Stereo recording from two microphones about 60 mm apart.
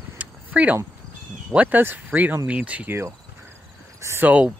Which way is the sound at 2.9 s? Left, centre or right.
Right.